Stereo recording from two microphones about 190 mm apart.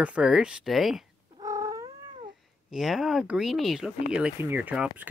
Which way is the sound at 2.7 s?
Centre (ahead or behind).